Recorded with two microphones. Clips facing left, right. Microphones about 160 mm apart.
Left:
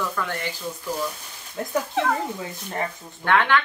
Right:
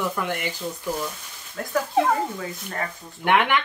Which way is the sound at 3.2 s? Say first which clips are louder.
Even; 15° right (ahead or behind).